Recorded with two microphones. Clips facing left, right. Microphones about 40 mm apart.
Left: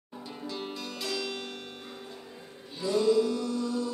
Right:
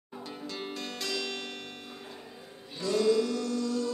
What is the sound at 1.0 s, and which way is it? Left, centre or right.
Zither, right.